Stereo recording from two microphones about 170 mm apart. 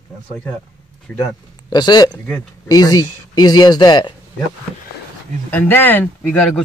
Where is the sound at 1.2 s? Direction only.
25° left (ahead or behind).